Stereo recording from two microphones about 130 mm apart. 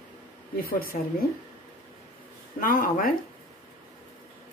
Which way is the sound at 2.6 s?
90° left.